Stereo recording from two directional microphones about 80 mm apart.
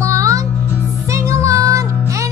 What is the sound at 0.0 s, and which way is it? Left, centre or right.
Music, right.